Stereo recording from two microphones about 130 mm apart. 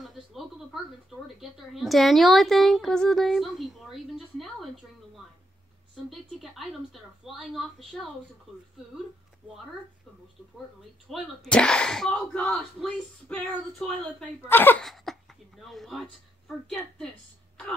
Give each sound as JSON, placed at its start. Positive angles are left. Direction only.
{"t": 0.0, "sound": "a woman's voice", "side_deg": 0}
{"t": 6.0, "sound": "a woman's voice", "side_deg": 0}
{"t": 11.1, "sound": "speech", "side_deg": 5}
{"t": 14.8, "sound": "speech", "side_deg": 0}